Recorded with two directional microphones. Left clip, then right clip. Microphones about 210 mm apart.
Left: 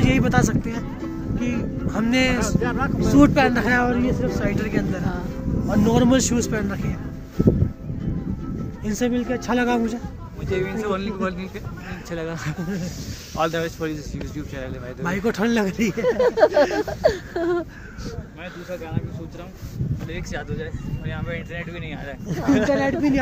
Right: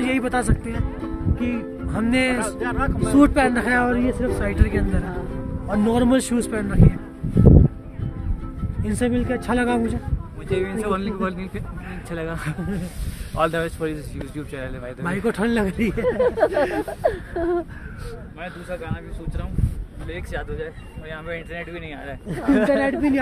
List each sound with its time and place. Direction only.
0.0 s speech: 5° left (ahead or behind)
2.6 s speech: 55° right (ahead or behind)
3.0 s speech: centre (ahead or behind)
8.8 s speech: centre (ahead or behind)
10.5 s speech: 25° right (ahead or behind)
15.0 s speech: 5° left (ahead or behind)
16.1 s a sound: 60° left (ahead or behind)
22.7 s speech: 5° left (ahead or behind)